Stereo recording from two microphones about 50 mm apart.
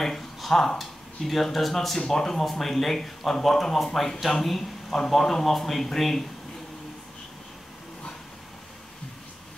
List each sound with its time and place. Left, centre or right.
0.0 s speech: centre